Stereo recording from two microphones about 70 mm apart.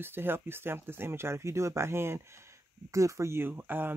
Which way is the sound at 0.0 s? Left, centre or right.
Right.